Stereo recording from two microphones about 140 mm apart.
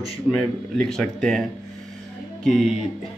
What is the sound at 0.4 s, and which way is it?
Speech, 5° left (ahead or behind).